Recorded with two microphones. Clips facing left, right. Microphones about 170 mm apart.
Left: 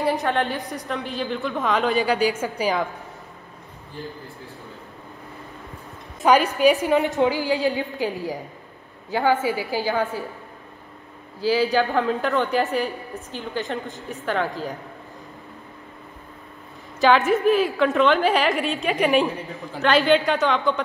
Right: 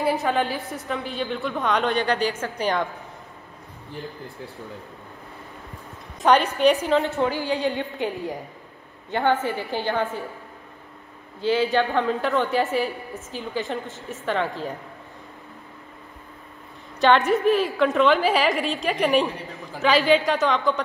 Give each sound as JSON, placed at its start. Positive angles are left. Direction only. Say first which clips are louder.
{"t": 0.0, "sound": "a woman's voice", "louder": "even", "side_deg": 0}
{"t": 6.2, "sound": "a woman's voice", "louder": "left 1 dB", "side_deg": 5}
{"t": 11.4, "sound": "a woman's voice", "louder": "left 1 dB", "side_deg": 0}
{"t": 17.0, "sound": "a woman's voice", "louder": "left 1 dB", "side_deg": 0}